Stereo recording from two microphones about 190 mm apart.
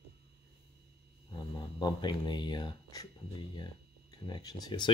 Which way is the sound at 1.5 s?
25° left (ahead or behind).